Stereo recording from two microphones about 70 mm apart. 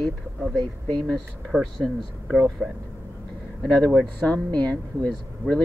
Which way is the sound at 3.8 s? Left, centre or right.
Centre.